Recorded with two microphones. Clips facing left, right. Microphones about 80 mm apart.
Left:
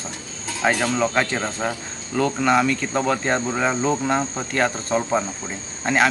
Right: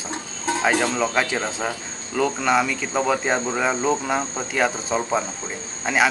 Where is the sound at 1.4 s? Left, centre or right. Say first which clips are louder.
Left 1 dB; centre.